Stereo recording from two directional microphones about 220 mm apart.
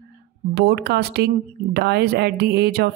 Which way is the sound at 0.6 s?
45° right (ahead or behind).